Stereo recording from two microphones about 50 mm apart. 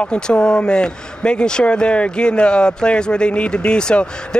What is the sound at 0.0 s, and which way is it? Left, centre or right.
Speech, centre.